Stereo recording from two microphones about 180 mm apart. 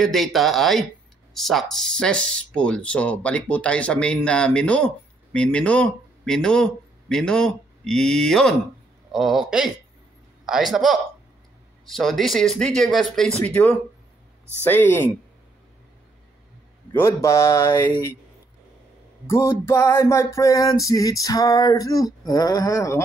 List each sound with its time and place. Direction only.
0.0 s a man's voice: centre (ahead or behind)
16.9 s a man's voice: 15° left (ahead or behind)
19.2 s a sound: 15° left (ahead or behind)